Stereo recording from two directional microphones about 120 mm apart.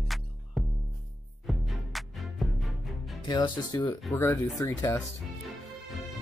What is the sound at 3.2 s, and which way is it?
Speech, 35° left (ahead or behind).